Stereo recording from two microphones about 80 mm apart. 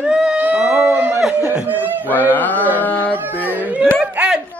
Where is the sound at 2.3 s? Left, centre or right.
Left.